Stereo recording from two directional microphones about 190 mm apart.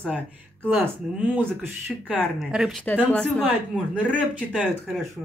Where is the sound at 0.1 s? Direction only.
10° right (ahead or behind).